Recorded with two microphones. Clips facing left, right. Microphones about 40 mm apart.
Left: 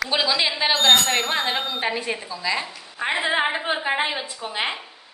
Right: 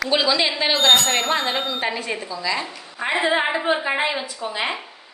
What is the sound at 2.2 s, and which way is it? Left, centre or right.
A woman's voice, centre.